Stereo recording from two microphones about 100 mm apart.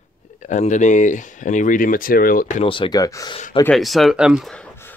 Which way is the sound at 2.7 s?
55° left (ahead or behind).